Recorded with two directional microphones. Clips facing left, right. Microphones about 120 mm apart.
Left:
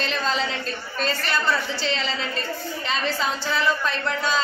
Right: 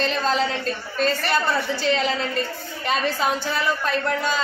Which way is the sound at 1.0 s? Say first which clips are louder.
Right 3 dB; 50° right (ahead or behind).